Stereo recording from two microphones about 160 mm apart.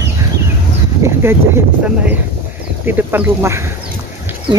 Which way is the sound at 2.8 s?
15° right (ahead or behind).